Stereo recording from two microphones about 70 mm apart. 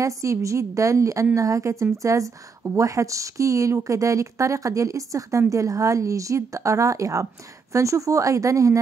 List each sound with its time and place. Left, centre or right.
0.0 s speech: right